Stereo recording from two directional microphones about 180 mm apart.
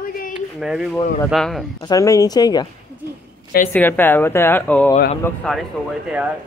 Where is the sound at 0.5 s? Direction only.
5° right (ahead or behind).